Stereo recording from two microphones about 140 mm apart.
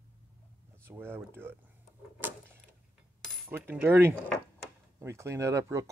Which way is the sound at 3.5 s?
15° right (ahead or behind).